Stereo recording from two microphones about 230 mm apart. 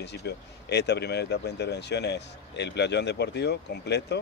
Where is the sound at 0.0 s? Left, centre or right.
Left.